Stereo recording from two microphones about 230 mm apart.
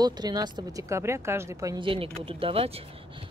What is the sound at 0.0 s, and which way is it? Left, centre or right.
Speech, centre.